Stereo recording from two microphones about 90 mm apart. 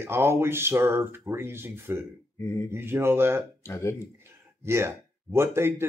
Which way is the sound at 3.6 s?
30° left (ahead or behind).